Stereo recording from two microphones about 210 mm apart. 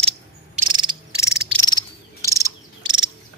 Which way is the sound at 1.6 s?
20° left (ahead or behind).